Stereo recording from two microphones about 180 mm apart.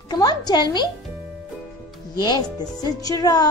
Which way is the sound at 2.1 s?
25° left (ahead or behind).